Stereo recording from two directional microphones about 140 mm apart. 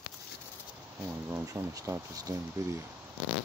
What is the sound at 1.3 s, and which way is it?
Speech, 20° right (ahead or behind).